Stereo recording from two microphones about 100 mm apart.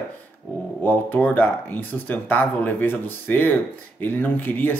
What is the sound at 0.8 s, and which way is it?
Speech, 20° left (ahead or behind).